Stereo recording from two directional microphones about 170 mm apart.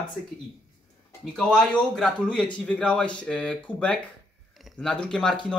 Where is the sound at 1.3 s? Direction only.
5° left (ahead or behind).